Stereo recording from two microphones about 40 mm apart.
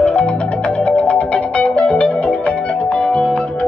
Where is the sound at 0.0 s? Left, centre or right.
Left.